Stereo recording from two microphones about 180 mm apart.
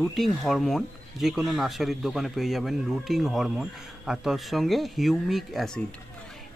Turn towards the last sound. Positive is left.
turn(degrees=0)  # may be behind; listen again after turning